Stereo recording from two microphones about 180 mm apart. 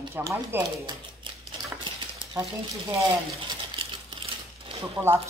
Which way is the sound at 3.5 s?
30° right (ahead or behind).